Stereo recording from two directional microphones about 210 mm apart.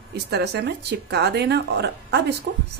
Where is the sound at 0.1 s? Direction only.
50° right (ahead or behind).